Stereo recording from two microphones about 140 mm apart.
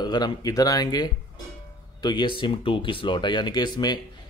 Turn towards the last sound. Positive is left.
turn(degrees=30)  # may be behind; listen again after turning